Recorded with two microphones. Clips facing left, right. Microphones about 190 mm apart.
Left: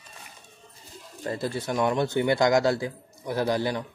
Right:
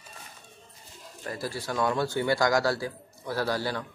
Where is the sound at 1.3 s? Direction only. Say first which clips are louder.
Left 4 dB; 25° left (ahead or behind).